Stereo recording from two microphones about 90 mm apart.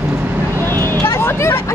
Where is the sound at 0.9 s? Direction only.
25° left (ahead or behind).